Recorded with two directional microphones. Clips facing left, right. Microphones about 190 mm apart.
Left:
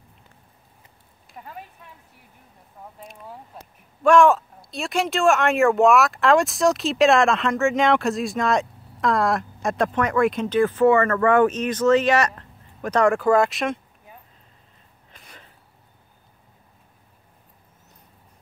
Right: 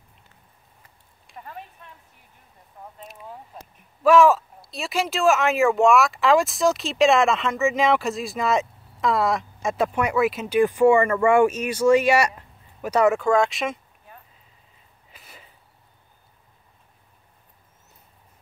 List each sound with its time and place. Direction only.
1.2 s a sound: centre (ahead or behind)
3.0 s speech: 5° right (ahead or behind)
15.0 s sneeze: 5° right (ahead or behind)